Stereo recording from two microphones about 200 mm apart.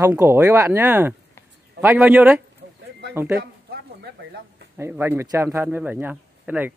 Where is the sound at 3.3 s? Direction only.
50° right (ahead or behind).